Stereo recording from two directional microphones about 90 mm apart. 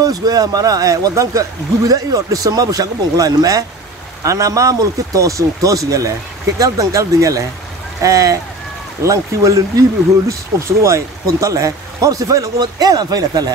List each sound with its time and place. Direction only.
0.0 s speech: 45° right (ahead or behind)